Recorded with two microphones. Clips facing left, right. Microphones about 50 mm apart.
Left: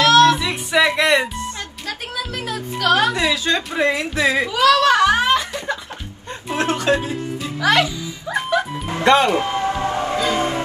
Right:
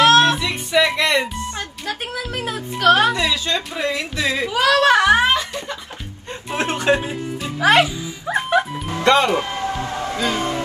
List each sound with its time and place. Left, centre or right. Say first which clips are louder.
0.0 s music: left 1 dB; right
0.4 s a sound: left 1 dB; centre
1.9 s a woman's voice: right 1 dB; right
3.2 s speech: left 2 dB; left
4.5 s a child's voice: right 1 dB; right
6.6 s speech: even; right
7.6 s music: right 2 dB; right
9.0 s speech: left 1 dB; left
9.8 s music: left 4 dB; left